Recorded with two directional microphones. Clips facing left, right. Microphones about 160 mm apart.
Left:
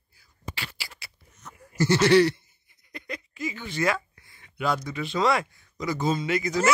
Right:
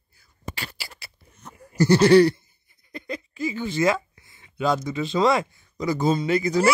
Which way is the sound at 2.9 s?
30° right (ahead or behind).